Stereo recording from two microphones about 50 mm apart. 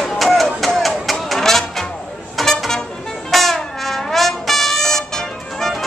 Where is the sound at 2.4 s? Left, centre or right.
Centre.